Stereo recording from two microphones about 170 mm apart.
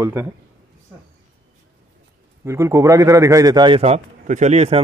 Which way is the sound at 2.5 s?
15° right (ahead or behind).